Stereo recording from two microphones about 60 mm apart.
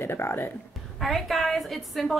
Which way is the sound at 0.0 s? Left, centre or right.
Left.